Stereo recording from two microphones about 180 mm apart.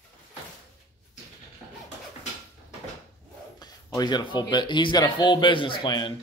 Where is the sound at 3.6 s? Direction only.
25° left (ahead or behind).